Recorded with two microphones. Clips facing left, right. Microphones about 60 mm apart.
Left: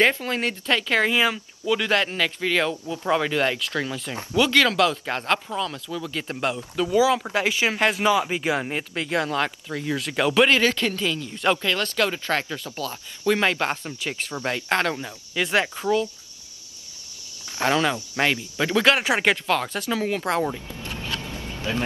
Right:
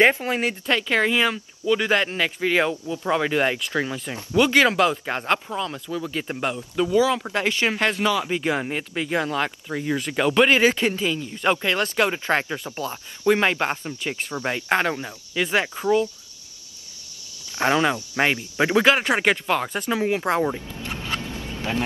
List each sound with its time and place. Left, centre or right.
0.0 s speech: centre
0.4 s speech: centre
6.9 s speech: centre
8.0 s speech: centre
8.5 s speech: centre
10.6 s speech: centre
13.4 s speech: centre
15.3 s speech: centre
15.6 s speech: centre
17.6 s speech: right
18.9 s speech: centre
19.4 s speech: centre
20.8 s a sound: right